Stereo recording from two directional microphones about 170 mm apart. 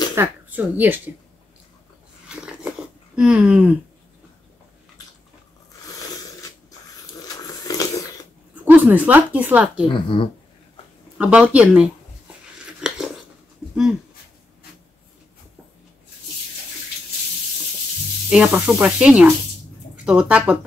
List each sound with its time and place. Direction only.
0.1 s speech: 10° right (ahead or behind)
2.2 s a sound: 5° right (ahead or behind)
3.2 s speech: 5° right (ahead or behind)
7.2 s a sound: 20° left (ahead or behind)
8.6 s speech: 10° right (ahead or behind)
9.8 s speech: 30° left (ahead or behind)
11.1 s speech: 5° right (ahead or behind)
12.8 s a sound: 5° right (ahead or behind)
18.3 s sizzle: 5° right (ahead or behind)
18.7 s speech: 5° right (ahead or behind)